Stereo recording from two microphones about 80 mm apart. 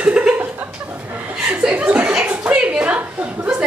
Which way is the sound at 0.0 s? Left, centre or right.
Centre.